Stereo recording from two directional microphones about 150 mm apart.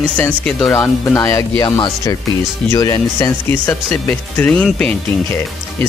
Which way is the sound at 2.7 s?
20° left (ahead or behind).